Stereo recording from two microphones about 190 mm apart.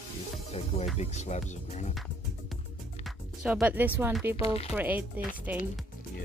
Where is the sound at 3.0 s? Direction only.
5° right (ahead or behind).